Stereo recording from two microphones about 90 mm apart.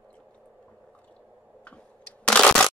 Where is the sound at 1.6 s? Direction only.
15° left (ahead or behind).